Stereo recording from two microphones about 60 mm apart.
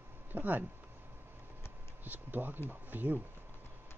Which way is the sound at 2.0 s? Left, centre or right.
Right.